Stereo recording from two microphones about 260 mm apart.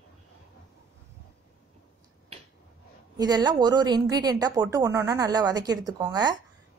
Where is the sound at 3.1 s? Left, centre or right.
Centre.